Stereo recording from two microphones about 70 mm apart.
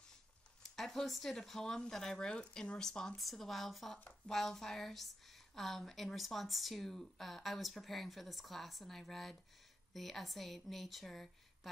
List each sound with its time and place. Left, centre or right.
0.7 s speech: centre